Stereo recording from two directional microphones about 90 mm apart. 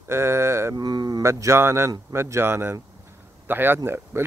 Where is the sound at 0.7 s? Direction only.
50° right (ahead or behind).